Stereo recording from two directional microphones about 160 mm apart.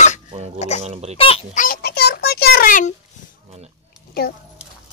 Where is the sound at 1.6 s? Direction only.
70° left (ahead or behind).